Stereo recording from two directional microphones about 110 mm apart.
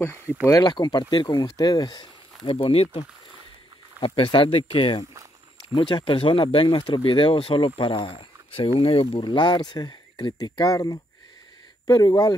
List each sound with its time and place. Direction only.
0.0 s speech: 20° left (ahead or behind)
0.6 s speech: 40° left (ahead or behind)
2.4 s speech: 55° left (ahead or behind)
4.0 s speech: 45° left (ahead or behind)